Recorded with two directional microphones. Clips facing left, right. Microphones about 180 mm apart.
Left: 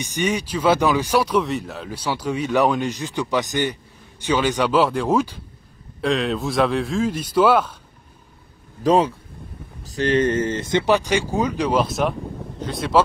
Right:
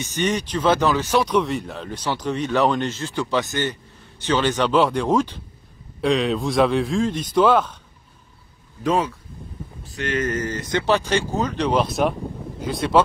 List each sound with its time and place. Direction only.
0.0 s a man's voice: 10° left (ahead or behind)
8.8 s speech: 30° left (ahead or behind); by 13.0 s centre (ahead or behind)